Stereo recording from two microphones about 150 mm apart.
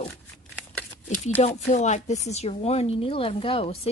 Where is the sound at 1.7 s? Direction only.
50° left (ahead or behind).